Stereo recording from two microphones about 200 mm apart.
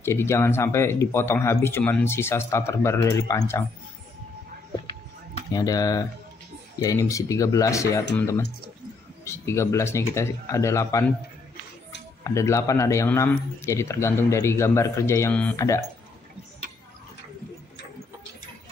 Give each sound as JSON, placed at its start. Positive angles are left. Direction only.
{"t": 0.0, "sound": "speech", "side_deg": 10}
{"t": 5.5, "sound": "speech", "side_deg": 20}
{"t": 9.2, "sound": "speech", "side_deg": 15}
{"t": 12.2, "sound": "speech", "side_deg": 15}